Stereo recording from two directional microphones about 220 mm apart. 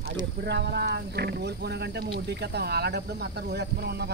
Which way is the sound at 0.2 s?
50° right (ahead or behind).